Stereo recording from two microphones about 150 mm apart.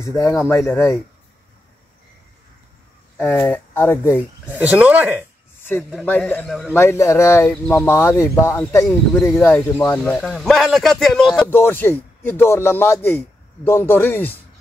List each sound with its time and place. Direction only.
0.0 s speech: 20° left (ahead or behind)
3.2 s speech: 15° left (ahead or behind)
4.5 s speech: 10° right (ahead or behind)
5.7 s speech: 10° left (ahead or behind)
6.7 s speech: 15° left (ahead or behind)
8.8 s a man's voice: centre (ahead or behind)
9.3 s a man's voice: 15° left (ahead or behind)
11.4 s speech: 15° left (ahead or behind)